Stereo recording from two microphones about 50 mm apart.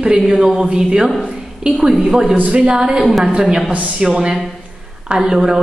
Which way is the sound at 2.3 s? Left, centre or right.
Right.